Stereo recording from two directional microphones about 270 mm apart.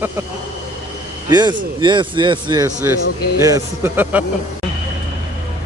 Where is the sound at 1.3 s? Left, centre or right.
Centre.